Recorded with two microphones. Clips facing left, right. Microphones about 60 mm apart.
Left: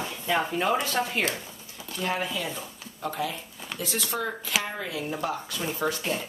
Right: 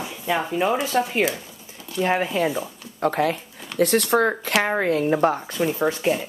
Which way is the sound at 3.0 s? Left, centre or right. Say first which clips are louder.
Right 10 dB; right.